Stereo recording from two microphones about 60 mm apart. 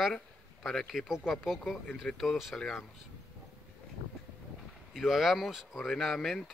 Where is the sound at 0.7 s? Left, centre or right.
Centre.